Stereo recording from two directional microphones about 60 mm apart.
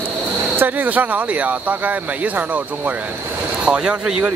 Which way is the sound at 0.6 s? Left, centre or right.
Right.